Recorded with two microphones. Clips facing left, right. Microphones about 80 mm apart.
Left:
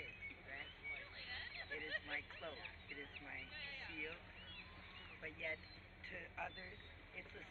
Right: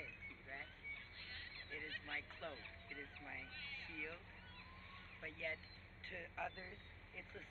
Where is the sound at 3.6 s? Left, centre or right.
Left.